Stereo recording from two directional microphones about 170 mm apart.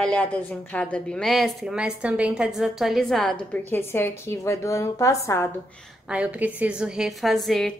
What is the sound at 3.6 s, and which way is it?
A woman's voice, 15° left (ahead or behind).